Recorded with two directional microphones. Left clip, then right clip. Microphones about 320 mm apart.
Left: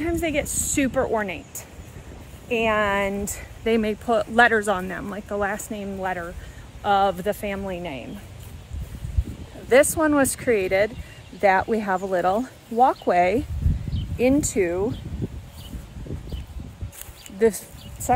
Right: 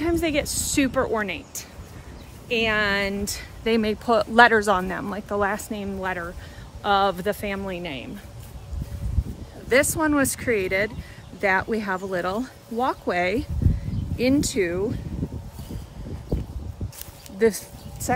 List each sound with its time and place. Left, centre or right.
0.0 s speech: centre
9.7 s speech: centre
17.4 s a sound: centre